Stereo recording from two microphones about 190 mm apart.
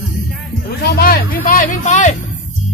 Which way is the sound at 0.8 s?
55° left (ahead or behind).